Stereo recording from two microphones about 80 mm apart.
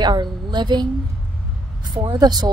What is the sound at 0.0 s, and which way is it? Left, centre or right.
Speech, right.